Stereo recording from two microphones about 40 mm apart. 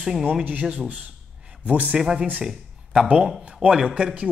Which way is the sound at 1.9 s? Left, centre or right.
Centre.